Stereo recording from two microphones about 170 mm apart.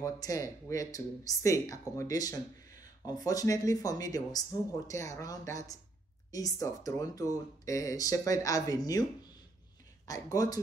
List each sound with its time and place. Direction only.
0.0 s speech: 20° left (ahead or behind)